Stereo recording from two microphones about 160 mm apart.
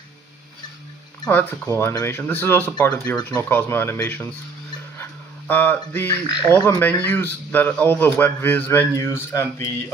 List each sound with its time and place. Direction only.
1.2 s speech: 10° left (ahead or behind)
4.9 s dog: 15° left (ahead or behind)
6.2 s speech: 25° left (ahead or behind)
6.5 s speech: 15° left (ahead or behind)